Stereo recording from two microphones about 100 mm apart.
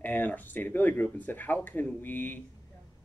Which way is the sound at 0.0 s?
15° left (ahead or behind).